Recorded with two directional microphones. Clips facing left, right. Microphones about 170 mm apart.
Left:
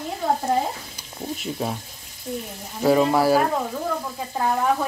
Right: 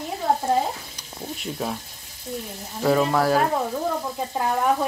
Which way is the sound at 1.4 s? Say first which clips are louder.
Even; 5° left (ahead or behind).